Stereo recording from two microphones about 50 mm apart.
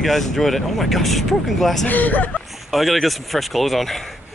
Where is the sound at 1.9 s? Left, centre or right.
Left.